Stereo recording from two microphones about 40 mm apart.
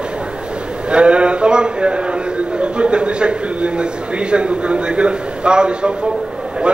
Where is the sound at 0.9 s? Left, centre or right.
Right.